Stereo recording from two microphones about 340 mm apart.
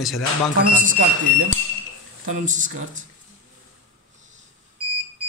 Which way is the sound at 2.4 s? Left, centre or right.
Right.